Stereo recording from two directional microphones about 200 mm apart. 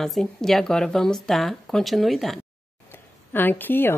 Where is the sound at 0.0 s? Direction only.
Centre (ahead or behind).